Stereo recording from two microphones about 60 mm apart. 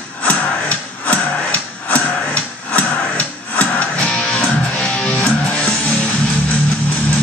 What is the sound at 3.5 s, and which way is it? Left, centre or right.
Music, left.